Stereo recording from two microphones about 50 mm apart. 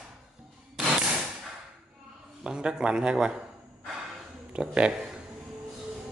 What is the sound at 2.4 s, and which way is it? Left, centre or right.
Speech, centre.